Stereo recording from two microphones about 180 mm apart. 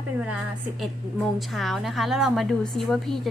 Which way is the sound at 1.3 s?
Centre (ahead or behind).